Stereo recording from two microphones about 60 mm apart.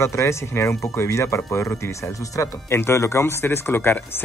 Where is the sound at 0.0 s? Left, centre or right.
Left.